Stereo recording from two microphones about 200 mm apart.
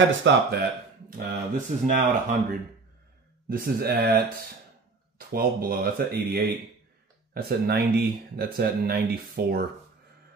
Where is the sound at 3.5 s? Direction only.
50° right (ahead or behind).